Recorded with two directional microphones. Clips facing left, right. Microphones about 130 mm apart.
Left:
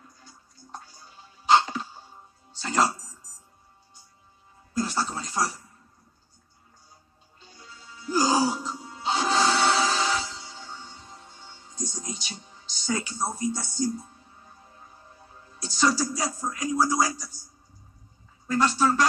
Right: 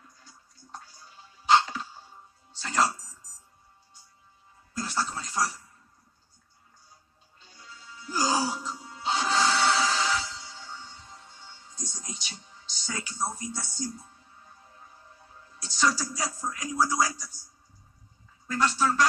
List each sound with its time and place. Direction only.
1.4 s cough: 30° left (ahead or behind)
2.6 s music: 20° left (ahead or behind)
4.7 s speech: 25° left (ahead or behind)
8.1 s music: 25° left (ahead or behind)
13.3 s a sound: 30° left (ahead or behind)
15.6 s speech: 30° left (ahead or behind)
18.5 s speech: 35° left (ahead or behind)